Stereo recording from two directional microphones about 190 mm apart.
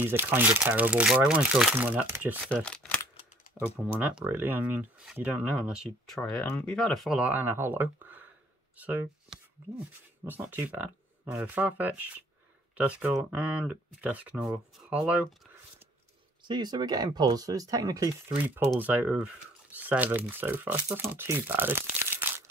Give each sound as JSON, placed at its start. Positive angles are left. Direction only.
{"t": 0.0, "sound": "speech", "side_deg": -10}
{"t": 2.5, "sound": "speech", "side_deg": 5}
{"t": 4.0, "sound": "speech", "side_deg": -10}
{"t": 16.4, "sound": "speech", "side_deg": -25}